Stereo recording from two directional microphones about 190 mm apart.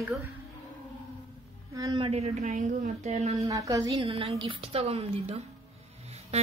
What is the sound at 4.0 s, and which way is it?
A woman's voice, 30° right (ahead or behind).